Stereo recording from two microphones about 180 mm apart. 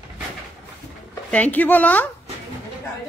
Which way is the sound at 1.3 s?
10° left (ahead or behind).